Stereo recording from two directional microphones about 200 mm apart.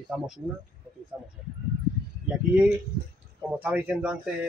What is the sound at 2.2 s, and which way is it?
Speech, 5° right (ahead or behind).